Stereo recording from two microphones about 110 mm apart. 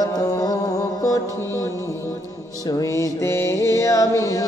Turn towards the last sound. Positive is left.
turn(degrees=30)  # may be behind; listen again after turning